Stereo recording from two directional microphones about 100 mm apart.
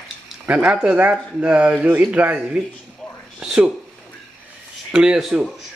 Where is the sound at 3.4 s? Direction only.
5° right (ahead or behind).